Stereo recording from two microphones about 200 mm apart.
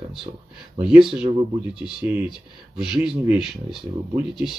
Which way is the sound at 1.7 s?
5° right (ahead or behind).